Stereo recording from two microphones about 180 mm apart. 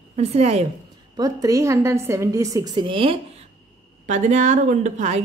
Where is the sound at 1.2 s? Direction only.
20° right (ahead or behind).